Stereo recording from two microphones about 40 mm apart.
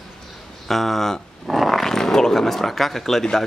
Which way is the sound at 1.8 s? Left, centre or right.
Centre.